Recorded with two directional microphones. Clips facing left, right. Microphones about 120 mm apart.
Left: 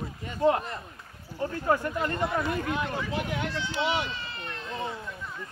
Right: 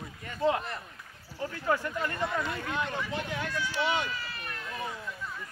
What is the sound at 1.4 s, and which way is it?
Speech, 35° left (ahead or behind).